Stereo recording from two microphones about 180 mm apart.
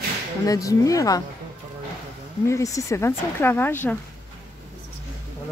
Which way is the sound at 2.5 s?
15° left (ahead or behind).